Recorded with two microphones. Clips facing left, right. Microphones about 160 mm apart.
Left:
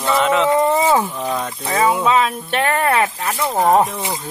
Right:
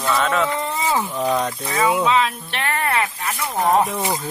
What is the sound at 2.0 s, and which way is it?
Speech, 45° left (ahead or behind).